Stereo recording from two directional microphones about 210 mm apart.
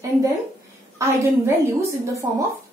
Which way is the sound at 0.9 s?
15° right (ahead or behind).